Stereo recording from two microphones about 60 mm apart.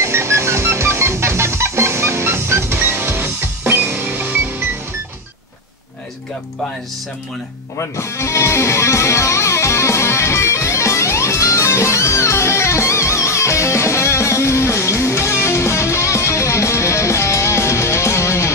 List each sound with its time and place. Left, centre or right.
0.0 s music: right
7.8 s music: left